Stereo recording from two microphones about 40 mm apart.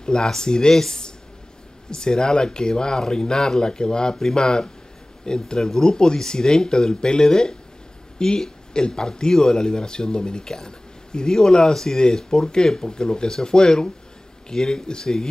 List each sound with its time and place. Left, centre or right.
0.0 s speech: centre